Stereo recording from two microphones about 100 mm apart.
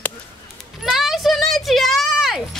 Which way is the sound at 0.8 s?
5° right (ahead or behind).